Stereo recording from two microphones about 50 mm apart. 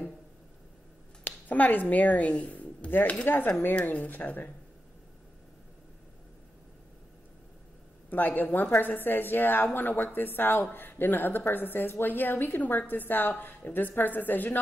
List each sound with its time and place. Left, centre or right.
1.2 s a woman's voice: left
3.3 s a woman's voice: left
8.1 s a woman's voice: left